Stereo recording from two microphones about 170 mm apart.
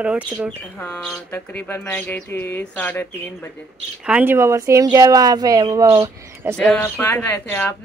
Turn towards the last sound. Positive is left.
turn(degrees=10)  # may be behind; listen again after turning